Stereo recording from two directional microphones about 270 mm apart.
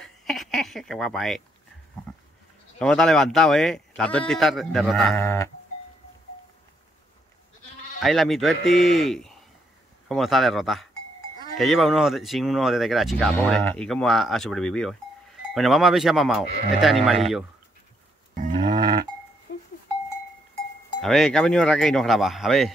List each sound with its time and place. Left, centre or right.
0.0 s speech: centre
2.8 s speech: centre
8.0 s speech: centre
19.5 s cowbell: left
21.0 s speech: centre